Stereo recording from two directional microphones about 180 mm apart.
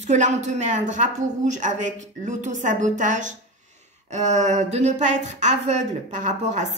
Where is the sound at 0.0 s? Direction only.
40° right (ahead or behind).